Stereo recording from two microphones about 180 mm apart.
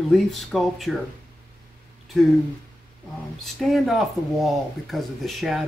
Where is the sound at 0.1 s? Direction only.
Centre (ahead or behind).